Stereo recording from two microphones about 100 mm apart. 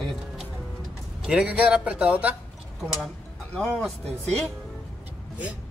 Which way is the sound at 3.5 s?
10° left (ahead or behind).